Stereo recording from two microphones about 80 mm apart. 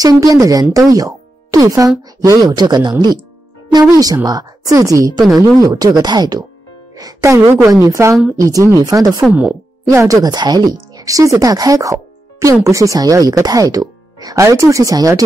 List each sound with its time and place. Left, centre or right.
0.2 s speech: right
3.9 s a woman's voice: right
10.2 s speech: right